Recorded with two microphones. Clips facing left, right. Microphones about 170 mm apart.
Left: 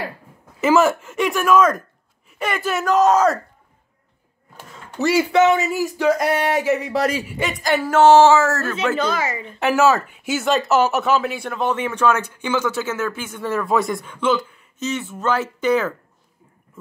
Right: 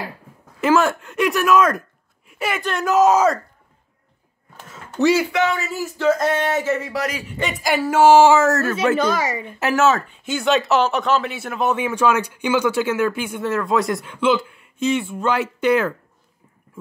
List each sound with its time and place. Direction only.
0.6 s speech: 5° left (ahead or behind)
4.7 s a sound: centre (ahead or behind)
5.3 s speech: 20° left (ahead or behind)
7.0 s a man's voice: 30° left (ahead or behind)
7.2 s speech: 10° left (ahead or behind)
7.6 s speech: 10° right (ahead or behind)
9.6 s speech: centre (ahead or behind)
13.4 s speech: centre (ahead or behind)